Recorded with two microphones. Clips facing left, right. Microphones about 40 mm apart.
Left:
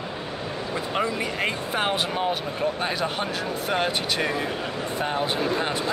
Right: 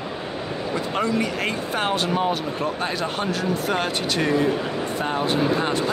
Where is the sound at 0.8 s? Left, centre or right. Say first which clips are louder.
Right 3 dB; centre.